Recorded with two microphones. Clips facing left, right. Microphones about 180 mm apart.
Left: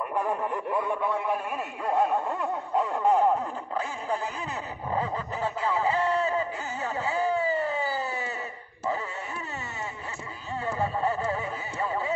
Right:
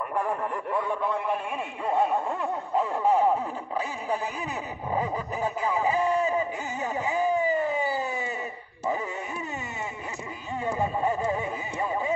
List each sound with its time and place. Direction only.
0.1 s speech: centre (ahead or behind)
4.9 s a sound: 15° right (ahead or behind)
10.6 s speech: 15° right (ahead or behind)